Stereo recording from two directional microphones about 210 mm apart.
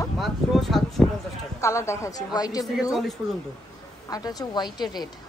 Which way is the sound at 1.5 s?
15° left (ahead or behind).